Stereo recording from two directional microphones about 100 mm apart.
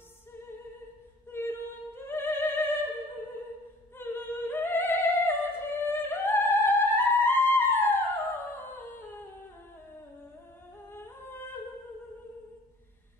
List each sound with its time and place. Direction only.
1.3 s opera: 20° left (ahead or behind)
4.0 s music: 20° left (ahead or behind)
8.7 s a sound: 20° left (ahead or behind)
10.9 s humming: 20° left (ahead or behind)